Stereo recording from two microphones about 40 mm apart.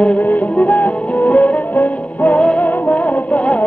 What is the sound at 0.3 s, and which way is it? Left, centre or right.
Music, left.